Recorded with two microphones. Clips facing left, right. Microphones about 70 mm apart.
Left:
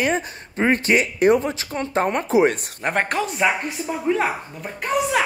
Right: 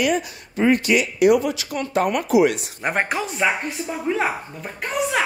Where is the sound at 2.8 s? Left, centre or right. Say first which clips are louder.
Left 1 dB; centre.